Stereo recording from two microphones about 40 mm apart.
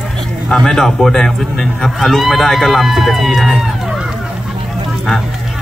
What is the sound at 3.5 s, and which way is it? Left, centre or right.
Music, centre.